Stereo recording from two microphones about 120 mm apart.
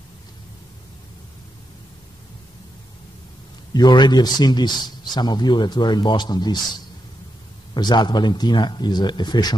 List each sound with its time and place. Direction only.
3.7 s a man's voice: 35° left (ahead or behind)
7.7 s a man's voice: 35° left (ahead or behind)